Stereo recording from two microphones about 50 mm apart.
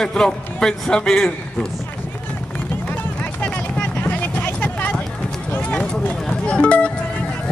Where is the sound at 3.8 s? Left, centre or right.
Left.